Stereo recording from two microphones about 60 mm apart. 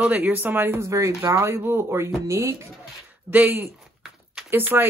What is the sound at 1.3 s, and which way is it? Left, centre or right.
Speech, right.